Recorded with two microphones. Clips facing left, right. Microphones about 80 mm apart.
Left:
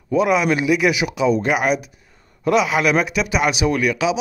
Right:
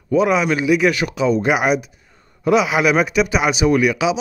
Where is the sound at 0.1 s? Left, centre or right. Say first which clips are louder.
Right 1 dB; centre.